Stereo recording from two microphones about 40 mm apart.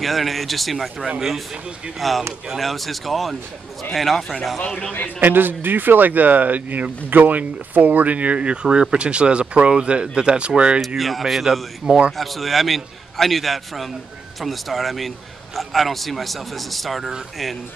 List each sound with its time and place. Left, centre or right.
0.0 s a man's voice: centre
4.6 s a man's voice: left
5.2 s speech: right
11.0 s a man's voice: centre
11.8 s speech: centre
12.2 s a man's voice: centre